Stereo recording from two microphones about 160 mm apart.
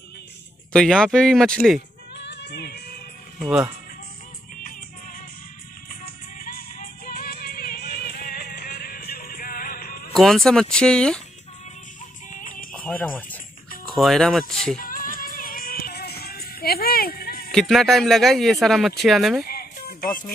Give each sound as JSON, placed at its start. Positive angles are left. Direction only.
{"t": 0.7, "sound": "a man's voice", "side_deg": 5}
{"t": 2.1, "sound": "music", "side_deg": 90}
{"t": 3.3, "sound": "speech", "side_deg": -5}
{"t": 4.6, "sound": "music", "side_deg": 60}
{"t": 10.1, "sound": "a man's voice", "side_deg": 0}
{"t": 12.3, "sound": "music", "side_deg": 55}
{"t": 12.7, "sound": "a man's voice", "side_deg": 10}
{"t": 14.8, "sound": "music", "side_deg": 60}
{"t": 17.5, "sound": "a man's voice", "side_deg": 0}
{"t": 19.4, "sound": "music", "side_deg": 75}